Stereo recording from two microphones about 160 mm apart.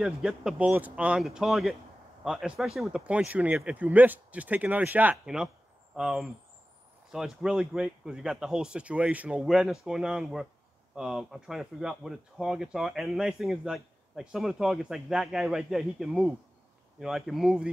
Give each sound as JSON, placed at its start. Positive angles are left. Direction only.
{"t": 0.0, "sound": "speech", "side_deg": -5}